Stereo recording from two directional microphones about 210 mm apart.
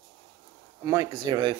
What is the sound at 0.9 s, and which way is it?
Speech, 15° right (ahead or behind).